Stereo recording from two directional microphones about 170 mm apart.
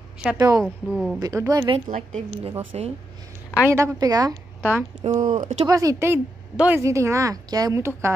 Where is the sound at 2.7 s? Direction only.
35° right (ahead or behind).